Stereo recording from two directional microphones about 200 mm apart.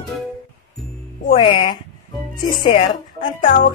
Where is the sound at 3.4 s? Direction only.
40° left (ahead or behind).